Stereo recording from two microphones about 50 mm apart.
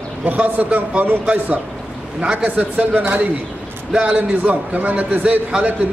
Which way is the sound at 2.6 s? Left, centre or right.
Right.